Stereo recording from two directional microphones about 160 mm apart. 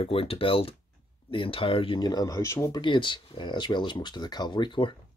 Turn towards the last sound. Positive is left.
turn(degrees=30)  # may be behind; listen again after turning